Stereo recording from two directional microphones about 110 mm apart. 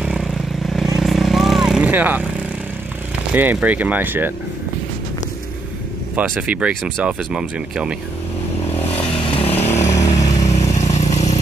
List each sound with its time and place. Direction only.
0.0 s vehicle: centre (ahead or behind)
1.9 s speech: 15° right (ahead or behind)
3.3 s speech: 15° right (ahead or behind)
6.1 s speech: 10° right (ahead or behind)
8.9 s vehicle: 55° left (ahead or behind)
9.8 s vehicle: 30° left (ahead or behind)
10.8 s vehicle: 90° left